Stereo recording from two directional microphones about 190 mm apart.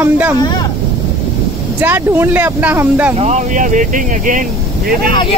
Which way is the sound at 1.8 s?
10° right (ahead or behind).